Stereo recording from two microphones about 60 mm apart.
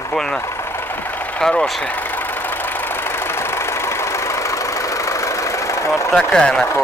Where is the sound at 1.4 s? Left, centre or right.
Centre.